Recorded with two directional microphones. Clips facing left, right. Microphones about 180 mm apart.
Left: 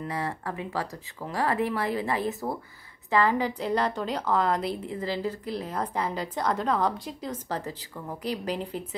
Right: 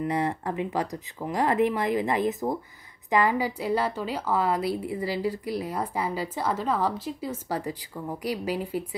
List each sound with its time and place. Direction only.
0.0 s a woman's voice: 20° right (ahead or behind)